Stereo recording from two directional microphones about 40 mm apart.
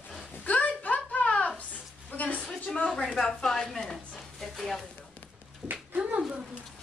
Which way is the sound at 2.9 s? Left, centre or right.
Centre.